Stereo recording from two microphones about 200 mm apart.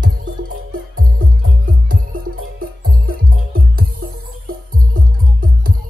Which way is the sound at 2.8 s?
45° right (ahead or behind).